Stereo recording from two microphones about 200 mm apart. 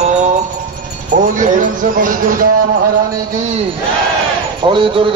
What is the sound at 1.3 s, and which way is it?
Speech, 40° right (ahead or behind).